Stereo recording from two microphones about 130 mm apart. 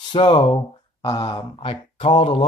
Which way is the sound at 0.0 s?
40° left (ahead or behind).